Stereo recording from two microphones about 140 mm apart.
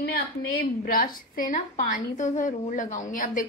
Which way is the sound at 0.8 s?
90° left.